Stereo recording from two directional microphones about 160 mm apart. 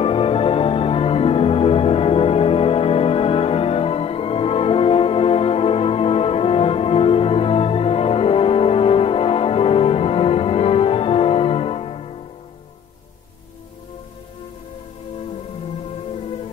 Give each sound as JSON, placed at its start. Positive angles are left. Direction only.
{"t": 0.0, "sound": "music", "side_deg": 35}